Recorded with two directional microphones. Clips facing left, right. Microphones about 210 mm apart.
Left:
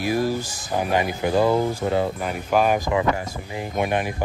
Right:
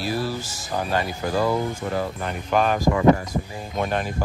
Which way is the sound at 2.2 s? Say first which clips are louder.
Left 2 dB; 5° left (ahead or behind).